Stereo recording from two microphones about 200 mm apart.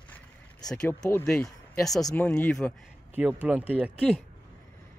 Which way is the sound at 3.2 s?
5° right (ahead or behind).